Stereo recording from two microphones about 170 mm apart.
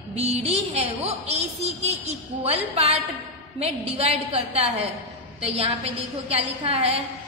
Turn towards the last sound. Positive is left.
turn(degrees=-35)  # may be behind; listen again after turning